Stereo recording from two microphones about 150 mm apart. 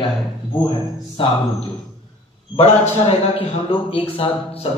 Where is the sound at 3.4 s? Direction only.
40° left (ahead or behind).